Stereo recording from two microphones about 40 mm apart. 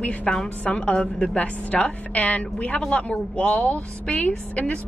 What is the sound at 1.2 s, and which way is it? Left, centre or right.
A woman's voice, left.